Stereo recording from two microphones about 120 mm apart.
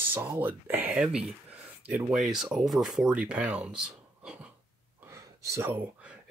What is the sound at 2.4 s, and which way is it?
Speech, centre (ahead or behind).